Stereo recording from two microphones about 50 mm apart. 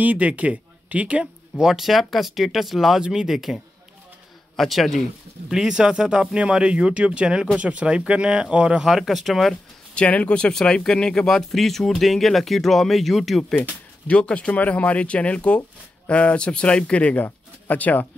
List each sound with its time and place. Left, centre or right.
0.0 s speech: right
1.2 s speech: centre
5.5 s speech: centre
8.8 s speech: centre
9.9 s speech: left
10.5 s speech: centre
14.0 s speech: left